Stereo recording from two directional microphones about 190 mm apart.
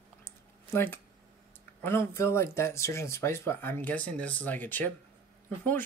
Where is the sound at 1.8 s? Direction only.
10° left (ahead or behind).